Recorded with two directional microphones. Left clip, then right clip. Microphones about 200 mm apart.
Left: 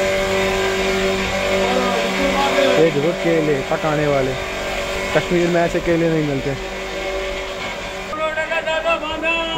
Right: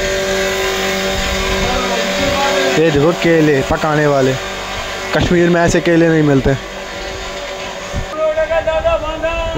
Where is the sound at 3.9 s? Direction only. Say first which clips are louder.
Right 5 dB; 35° right (ahead or behind).